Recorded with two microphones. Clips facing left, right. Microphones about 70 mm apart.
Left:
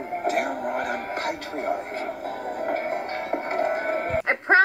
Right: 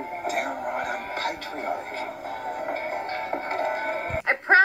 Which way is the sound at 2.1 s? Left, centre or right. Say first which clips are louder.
Left 3 dB; left.